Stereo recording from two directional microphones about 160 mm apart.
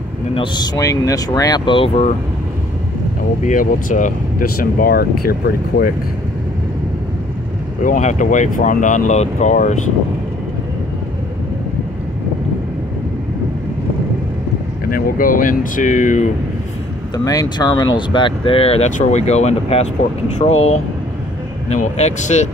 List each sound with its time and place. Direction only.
0.3 s speech: 30° left (ahead or behind)
0.7 s speech: 20° left (ahead or behind)
3.4 s speech: 50° left (ahead or behind); by 5.9 s 70° left (ahead or behind)
7.8 s speech: 50° left (ahead or behind)
14.9 s speech: 65° left (ahead or behind)
17.2 s speech: 25° left (ahead or behind); by 22.5 s 45° left (ahead or behind)